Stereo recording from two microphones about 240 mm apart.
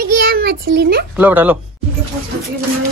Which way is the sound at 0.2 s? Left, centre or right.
Right.